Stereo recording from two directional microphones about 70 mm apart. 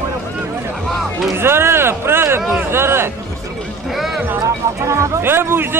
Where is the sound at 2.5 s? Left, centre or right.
Right.